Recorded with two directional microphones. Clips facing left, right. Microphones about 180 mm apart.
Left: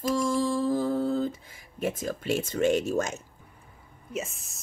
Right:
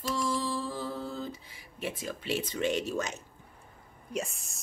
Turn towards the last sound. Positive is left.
turn(degrees=0)  # may be behind; listen again after turning